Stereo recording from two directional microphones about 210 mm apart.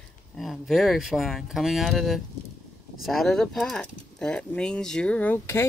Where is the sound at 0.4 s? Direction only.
Centre (ahead or behind).